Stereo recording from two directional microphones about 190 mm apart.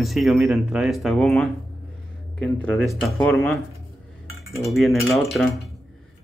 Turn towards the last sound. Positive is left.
turn(degrees=0)  # may be behind; listen again after turning